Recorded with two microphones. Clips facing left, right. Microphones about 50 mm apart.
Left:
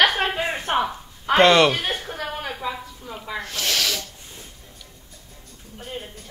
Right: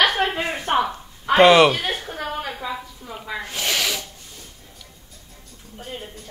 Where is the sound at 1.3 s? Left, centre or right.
Centre.